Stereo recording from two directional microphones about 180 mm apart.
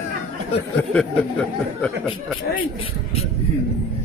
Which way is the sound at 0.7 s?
5° left (ahead or behind).